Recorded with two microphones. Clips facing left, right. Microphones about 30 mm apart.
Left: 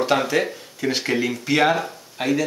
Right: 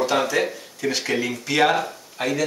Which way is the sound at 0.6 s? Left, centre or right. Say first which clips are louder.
Left 1 dB; left.